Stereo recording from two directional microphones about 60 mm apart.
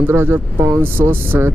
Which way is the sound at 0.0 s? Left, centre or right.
Right.